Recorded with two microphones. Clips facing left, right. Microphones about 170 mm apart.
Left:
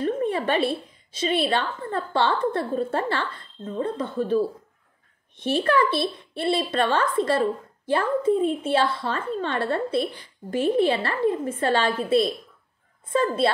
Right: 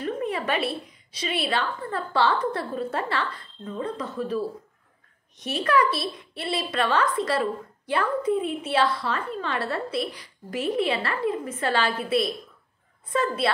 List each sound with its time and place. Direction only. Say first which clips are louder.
0.0 s a woman's voice: left 4 dB; 30° left (ahead or behind)